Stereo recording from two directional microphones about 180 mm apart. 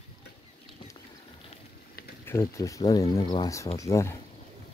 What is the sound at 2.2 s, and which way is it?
Speech, 15° left (ahead or behind).